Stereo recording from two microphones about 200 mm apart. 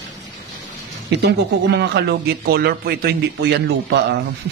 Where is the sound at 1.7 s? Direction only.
55° right (ahead or behind).